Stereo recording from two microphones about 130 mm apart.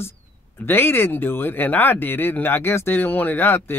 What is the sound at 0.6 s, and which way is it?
Speech, 15° left (ahead or behind).